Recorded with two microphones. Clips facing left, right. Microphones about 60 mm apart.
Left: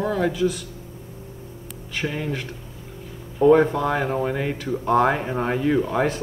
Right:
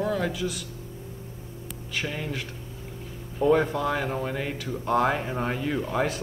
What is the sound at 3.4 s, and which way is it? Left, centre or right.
Speech, centre.